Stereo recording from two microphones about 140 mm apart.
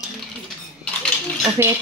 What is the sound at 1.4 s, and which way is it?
Speech, 20° right (ahead or behind).